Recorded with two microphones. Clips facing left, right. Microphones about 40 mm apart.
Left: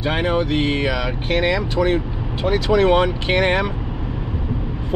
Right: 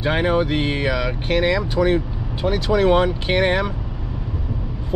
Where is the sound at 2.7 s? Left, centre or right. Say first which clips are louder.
Left 1 dB; left.